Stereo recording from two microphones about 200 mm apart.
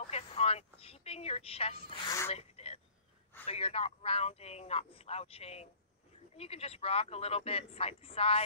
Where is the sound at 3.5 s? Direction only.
30° left (ahead or behind).